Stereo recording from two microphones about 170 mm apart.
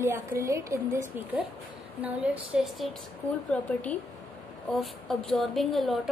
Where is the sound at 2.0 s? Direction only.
5° right (ahead or behind).